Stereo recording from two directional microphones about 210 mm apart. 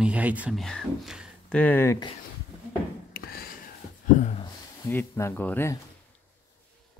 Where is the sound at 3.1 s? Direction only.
45° left (ahead or behind).